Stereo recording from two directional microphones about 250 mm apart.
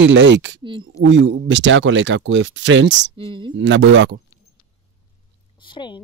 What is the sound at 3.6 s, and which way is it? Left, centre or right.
Speech, right.